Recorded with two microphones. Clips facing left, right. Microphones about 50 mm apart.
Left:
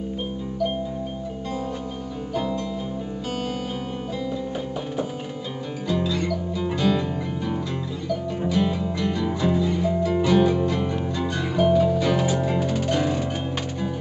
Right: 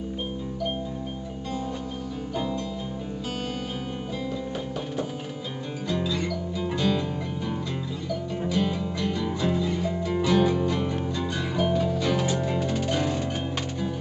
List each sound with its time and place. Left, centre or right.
2.3 s music: centre
5.9 s music: centre